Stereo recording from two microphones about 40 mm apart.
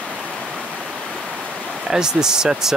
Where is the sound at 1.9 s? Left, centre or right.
Centre.